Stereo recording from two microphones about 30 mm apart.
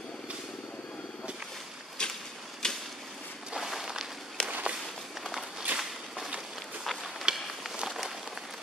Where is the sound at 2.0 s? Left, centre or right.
Left.